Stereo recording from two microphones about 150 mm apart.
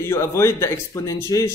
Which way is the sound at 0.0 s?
20° left (ahead or behind).